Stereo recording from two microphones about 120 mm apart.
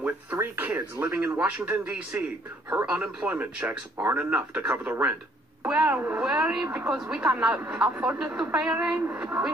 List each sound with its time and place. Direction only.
0.0 s speech: 15° right (ahead or behind)